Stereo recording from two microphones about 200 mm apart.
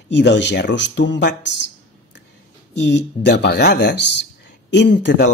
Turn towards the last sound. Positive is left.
turn(degrees=60)  # may be behind; listen again after turning